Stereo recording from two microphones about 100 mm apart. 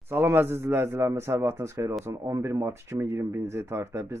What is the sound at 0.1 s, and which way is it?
Speech, 20° right (ahead or behind).